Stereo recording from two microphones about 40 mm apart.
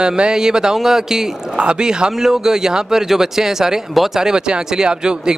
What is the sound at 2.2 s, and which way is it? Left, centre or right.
A man's voice, centre.